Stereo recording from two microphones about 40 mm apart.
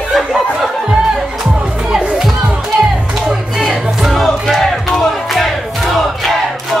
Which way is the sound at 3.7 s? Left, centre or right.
Centre.